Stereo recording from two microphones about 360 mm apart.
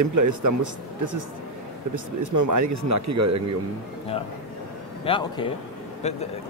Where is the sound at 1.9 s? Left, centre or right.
Right.